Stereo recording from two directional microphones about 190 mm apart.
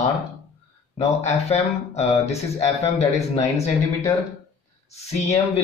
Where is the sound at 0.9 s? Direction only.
35° left (ahead or behind).